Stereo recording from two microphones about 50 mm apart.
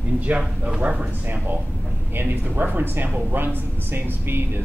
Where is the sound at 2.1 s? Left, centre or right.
Right.